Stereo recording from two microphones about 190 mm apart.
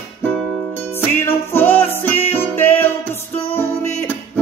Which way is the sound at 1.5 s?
10° left (ahead or behind).